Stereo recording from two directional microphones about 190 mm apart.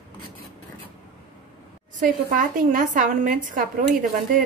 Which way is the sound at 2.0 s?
45° right (ahead or behind).